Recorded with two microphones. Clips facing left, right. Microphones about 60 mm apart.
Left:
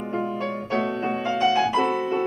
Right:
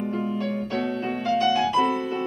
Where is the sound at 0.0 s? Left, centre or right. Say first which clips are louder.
Even; left.